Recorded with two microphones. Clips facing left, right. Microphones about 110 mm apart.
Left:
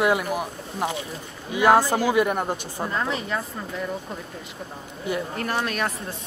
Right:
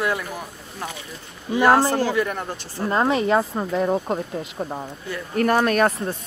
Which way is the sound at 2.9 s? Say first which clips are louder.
Right 9 dB; 65° right (ahead or behind).